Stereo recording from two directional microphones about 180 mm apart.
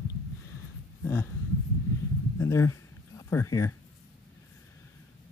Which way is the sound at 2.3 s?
15° left (ahead or behind).